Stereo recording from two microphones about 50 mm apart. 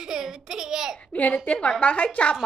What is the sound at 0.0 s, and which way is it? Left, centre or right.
Speech, centre.